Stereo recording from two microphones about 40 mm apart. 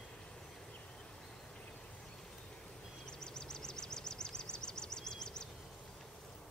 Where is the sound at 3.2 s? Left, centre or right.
Centre.